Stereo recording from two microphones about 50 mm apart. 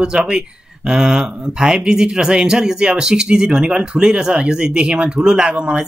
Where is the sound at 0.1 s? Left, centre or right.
Centre.